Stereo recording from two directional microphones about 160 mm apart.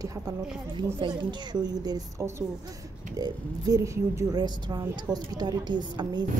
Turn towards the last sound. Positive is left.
turn(degrees=-30)  # may be behind; listen again after turning